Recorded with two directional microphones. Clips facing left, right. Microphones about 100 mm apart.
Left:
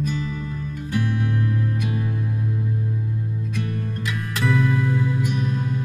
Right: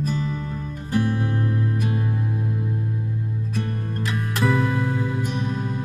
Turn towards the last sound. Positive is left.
turn(degrees=-30)  # may be behind; listen again after turning